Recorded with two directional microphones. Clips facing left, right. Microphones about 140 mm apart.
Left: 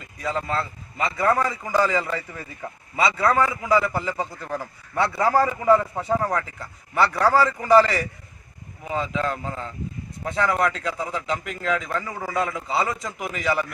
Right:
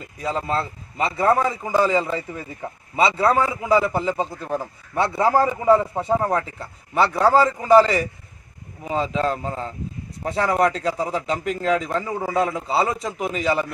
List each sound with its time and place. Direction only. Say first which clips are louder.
0.0 s a man's voice: right 2 dB; 30° right (ahead or behind)
8.8 s a man's voice: right 3 dB; 30° right (ahead or behind)